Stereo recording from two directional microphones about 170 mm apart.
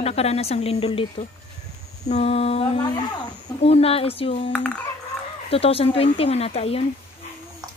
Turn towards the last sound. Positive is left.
turn(degrees=35)  # may be behind; listen again after turning